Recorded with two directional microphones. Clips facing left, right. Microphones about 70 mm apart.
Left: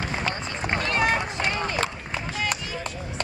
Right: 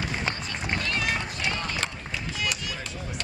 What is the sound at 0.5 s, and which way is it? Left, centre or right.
Run, left.